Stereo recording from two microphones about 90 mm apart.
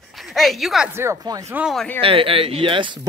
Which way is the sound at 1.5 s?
20° right (ahead or behind).